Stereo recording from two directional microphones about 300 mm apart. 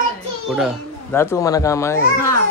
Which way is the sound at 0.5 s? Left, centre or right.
Centre.